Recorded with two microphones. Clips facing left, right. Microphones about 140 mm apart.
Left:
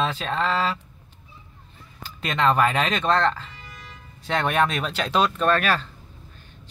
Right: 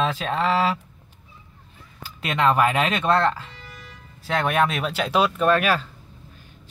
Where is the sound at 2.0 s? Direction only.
10° right (ahead or behind).